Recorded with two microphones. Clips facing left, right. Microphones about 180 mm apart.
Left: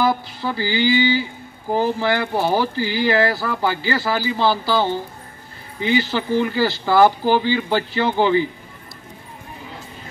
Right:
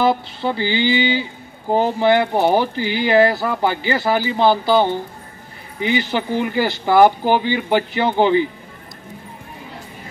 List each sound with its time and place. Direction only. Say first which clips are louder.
0.0 s speech: right 2 dB; 25° right (ahead or behind)